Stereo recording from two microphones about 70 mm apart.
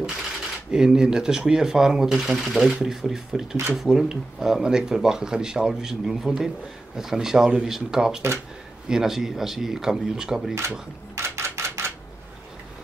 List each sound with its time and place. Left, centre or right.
0.7 s speech: centre
11.1 s typewriter: right